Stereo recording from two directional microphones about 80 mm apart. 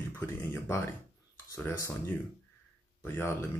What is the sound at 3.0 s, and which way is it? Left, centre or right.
Speech, left.